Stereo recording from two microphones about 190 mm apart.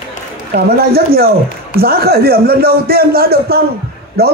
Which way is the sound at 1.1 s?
55° right (ahead or behind).